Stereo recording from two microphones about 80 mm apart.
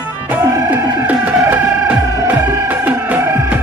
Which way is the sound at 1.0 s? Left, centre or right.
Centre.